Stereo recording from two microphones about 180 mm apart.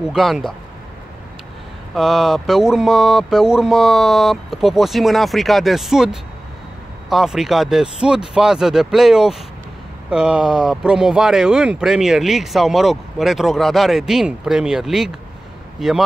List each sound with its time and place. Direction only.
0.1 s speech: centre (ahead or behind)
2.0 s speech: centre (ahead or behind)